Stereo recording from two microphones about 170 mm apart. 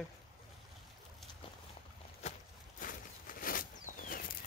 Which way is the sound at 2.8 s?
50° left (ahead or behind).